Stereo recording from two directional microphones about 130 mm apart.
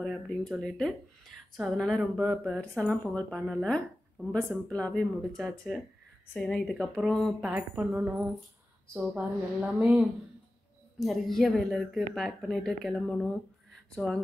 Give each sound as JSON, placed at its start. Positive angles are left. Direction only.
{"t": 0.0, "sound": "a woman's voice", "side_deg": 5}
{"t": 7.4, "sound": "speech", "side_deg": -10}
{"t": 9.1, "sound": "a woman's voice", "side_deg": -10}